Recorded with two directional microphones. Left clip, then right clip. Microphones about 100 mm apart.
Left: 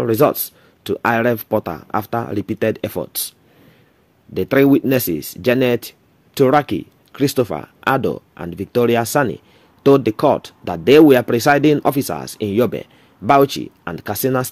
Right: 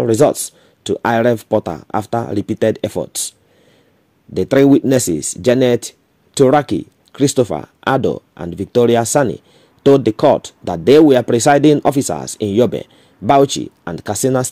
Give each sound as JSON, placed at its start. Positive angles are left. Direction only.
{"t": 0.0, "sound": "speech", "side_deg": -45}